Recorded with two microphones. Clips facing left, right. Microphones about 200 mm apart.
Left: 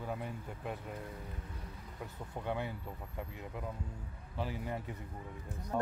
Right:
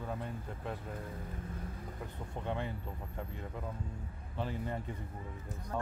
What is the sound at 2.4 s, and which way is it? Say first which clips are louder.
Speech: even; 10° left (ahead or behind).